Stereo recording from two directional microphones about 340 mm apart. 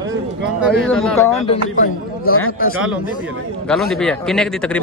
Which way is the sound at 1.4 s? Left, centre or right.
Left.